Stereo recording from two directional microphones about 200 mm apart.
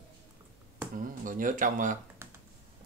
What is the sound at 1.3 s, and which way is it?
Speech, 40° right (ahead or behind).